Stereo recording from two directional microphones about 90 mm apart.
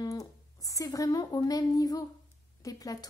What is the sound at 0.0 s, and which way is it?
A woman's voice, 40° left (ahead or behind).